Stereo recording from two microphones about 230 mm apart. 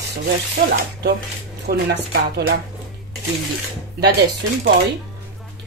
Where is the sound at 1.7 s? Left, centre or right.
Right.